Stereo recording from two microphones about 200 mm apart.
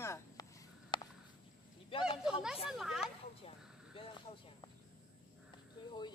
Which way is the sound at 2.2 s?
5° right (ahead or behind).